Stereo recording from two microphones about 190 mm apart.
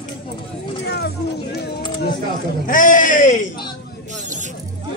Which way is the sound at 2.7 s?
45° left (ahead or behind).